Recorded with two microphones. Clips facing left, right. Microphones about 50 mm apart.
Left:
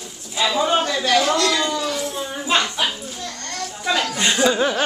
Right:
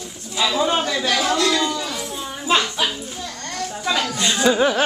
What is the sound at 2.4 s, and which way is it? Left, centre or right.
Music, centre.